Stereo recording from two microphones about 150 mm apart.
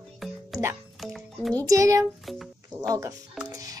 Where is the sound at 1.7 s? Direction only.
20° right (ahead or behind).